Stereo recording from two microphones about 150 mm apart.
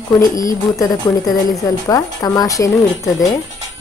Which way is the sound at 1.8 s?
25° left (ahead or behind).